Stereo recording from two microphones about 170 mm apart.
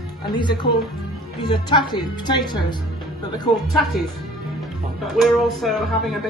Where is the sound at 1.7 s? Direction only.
25° left (ahead or behind).